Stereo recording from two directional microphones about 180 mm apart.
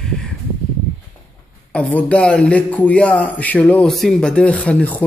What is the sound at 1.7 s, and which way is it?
A man's voice, 5° left (ahead or behind).